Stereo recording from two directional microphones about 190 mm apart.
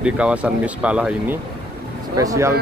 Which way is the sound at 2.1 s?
20° right (ahead or behind).